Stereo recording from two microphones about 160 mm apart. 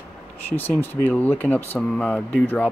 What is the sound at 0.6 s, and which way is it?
Speech, 10° left (ahead or behind).